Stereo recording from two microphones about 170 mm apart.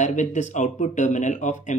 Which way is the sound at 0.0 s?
45° left (ahead or behind).